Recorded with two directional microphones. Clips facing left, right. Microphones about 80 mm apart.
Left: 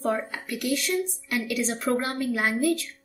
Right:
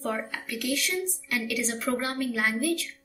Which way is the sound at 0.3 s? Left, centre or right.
Left.